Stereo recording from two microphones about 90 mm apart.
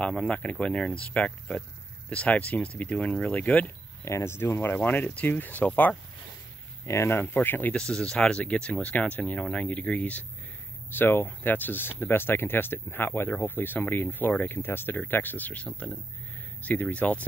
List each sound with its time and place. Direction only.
0.0 s speech: 10° left (ahead or behind)
4.0 s speech: 30° left (ahead or behind)
6.9 s speech: 30° left (ahead or behind)
7.7 s speech: 10° left (ahead or behind)